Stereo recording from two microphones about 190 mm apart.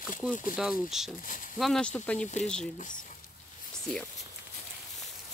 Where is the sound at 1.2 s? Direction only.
45° left (ahead or behind).